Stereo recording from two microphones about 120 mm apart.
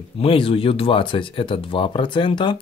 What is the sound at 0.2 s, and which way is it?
Speech, 50° left (ahead or behind).